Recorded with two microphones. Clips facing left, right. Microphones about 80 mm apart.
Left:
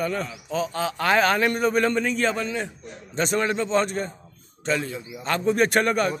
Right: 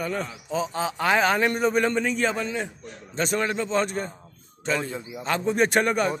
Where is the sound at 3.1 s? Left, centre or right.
Centre.